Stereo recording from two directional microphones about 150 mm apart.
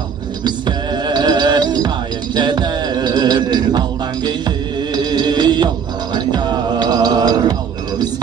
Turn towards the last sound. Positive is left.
turn(degrees=-25)  # may be behind; listen again after turning